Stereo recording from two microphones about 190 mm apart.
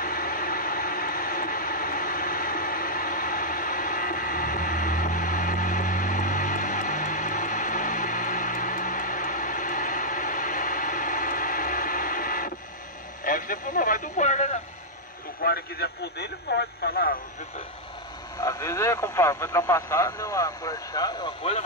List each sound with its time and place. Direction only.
0.0 s vehicle: 45° left (ahead or behind)
13.2 s radio: 45° left (ahead or behind)
15.4 s speech: 55° left (ahead or behind)
18.4 s speech: 15° left (ahead or behind)